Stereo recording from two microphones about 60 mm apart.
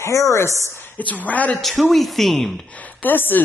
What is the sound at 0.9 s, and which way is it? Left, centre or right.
Speech, left.